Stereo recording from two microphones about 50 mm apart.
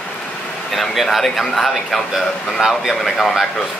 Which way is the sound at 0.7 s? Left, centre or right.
Centre.